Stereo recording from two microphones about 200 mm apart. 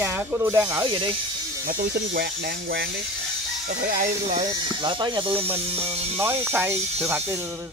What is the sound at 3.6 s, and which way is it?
Speech, 45° right (ahead or behind).